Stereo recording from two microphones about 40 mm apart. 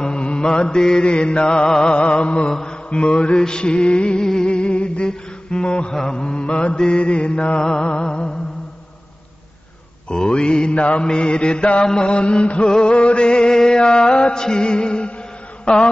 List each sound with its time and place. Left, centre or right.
0.0 s mantra: left
4.2 s mantra: centre
10.0 s mantra: left
14.4 s music: left
15.6 s mantra: left